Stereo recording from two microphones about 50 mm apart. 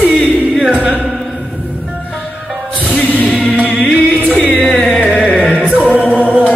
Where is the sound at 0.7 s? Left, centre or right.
Right.